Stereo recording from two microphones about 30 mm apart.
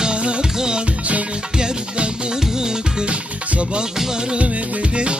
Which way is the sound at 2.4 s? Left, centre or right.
Right.